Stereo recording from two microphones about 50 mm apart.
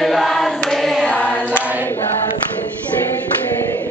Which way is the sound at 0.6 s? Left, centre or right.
Centre.